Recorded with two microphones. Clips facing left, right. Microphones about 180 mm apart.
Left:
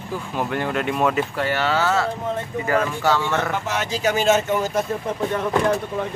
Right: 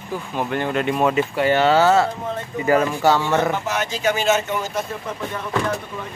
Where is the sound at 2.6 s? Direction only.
15° right (ahead or behind).